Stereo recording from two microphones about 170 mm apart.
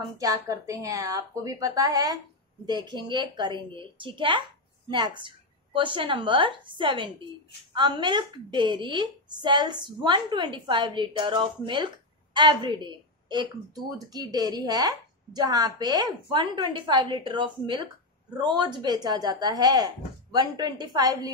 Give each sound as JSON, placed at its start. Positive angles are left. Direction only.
{"t": 0.2, "sound": "a woman's voice", "side_deg": -20}